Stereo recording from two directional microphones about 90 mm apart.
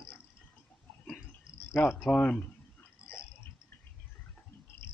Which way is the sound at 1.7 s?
25° left (ahead or behind).